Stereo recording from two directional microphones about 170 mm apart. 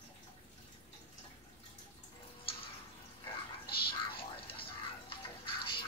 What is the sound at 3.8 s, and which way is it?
Whispering, 30° left (ahead or behind).